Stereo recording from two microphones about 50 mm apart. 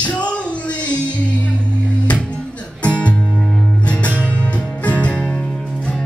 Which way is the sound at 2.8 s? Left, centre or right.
Left.